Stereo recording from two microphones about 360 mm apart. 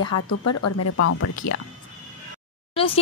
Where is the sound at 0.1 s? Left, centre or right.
Left.